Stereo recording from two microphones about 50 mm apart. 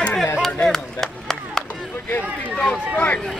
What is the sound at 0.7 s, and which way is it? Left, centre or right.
Chop, centre.